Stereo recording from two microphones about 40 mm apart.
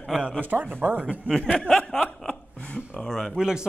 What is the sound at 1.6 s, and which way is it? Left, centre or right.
Speech, centre.